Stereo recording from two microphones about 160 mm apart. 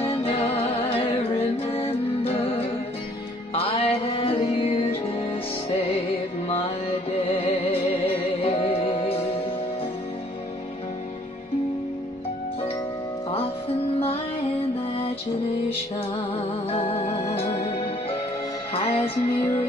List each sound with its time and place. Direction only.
0.2 s music: 40° left (ahead or behind)
7.1 s music: 40° left (ahead or behind)
16.7 s music: 35° left (ahead or behind)